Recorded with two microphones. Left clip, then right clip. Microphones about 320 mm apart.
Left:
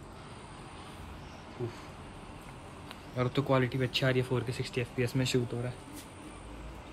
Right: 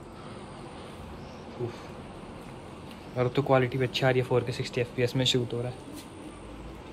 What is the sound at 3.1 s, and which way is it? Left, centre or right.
Speech, centre.